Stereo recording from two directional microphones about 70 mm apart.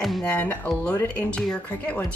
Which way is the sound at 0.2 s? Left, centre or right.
Left.